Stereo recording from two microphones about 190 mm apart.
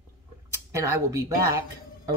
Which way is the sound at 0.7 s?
15° right (ahead or behind).